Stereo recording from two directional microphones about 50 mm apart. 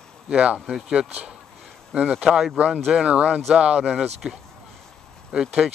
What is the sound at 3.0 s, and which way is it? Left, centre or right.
Speech, right.